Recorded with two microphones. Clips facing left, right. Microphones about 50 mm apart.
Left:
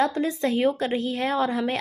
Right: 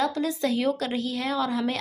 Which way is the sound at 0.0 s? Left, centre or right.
Left.